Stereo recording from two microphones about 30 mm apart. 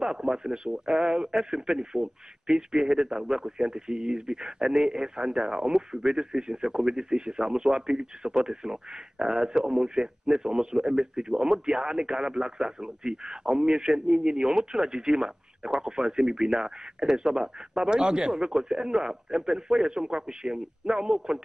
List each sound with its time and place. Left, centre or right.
0.0 s speech: right
3.3 s speech: right